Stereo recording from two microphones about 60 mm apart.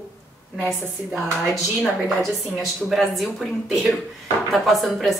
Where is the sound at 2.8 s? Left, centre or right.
Centre.